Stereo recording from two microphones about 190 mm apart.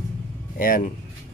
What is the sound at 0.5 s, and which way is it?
Speech, 45° left (ahead or behind).